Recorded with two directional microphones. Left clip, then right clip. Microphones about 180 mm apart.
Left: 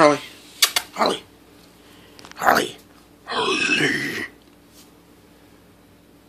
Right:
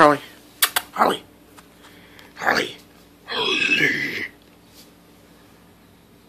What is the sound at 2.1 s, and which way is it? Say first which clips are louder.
Whispering: left 3 dB; 15° left (ahead or behind).